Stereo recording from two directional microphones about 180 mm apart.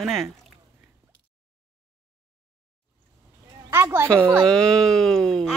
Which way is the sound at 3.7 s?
15° right (ahead or behind).